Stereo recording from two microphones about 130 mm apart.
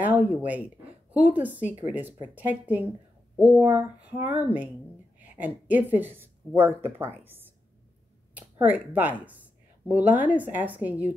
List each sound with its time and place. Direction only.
0.0 s speech: 10° right (ahead or behind)